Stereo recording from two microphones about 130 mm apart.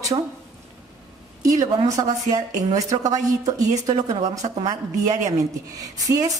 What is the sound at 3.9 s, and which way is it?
Speech, 65° right (ahead or behind).